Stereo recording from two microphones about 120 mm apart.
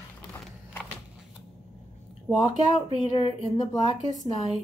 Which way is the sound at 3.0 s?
45° left (ahead or behind).